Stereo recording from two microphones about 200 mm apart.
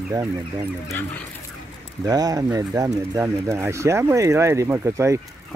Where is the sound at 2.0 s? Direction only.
20° right (ahead or behind).